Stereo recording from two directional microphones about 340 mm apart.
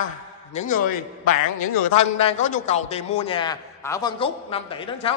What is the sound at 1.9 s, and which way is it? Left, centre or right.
A man's voice, centre.